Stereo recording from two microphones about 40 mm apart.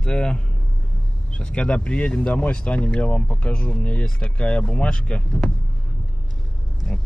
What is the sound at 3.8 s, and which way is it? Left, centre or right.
Speech, left.